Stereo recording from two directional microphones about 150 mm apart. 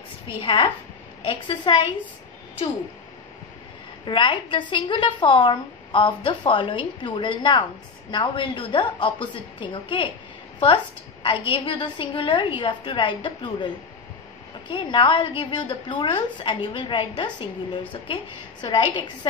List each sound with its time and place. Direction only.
0.4 s a woman's voice: 35° left (ahead or behind)
4.0 s a woman's voice: 35° left (ahead or behind)
11.2 s a woman's voice: 35° left (ahead or behind)
14.7 s a woman's voice: 35° left (ahead or behind)